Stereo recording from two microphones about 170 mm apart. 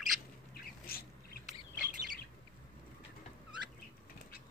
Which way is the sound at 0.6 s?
60° left (ahead or behind).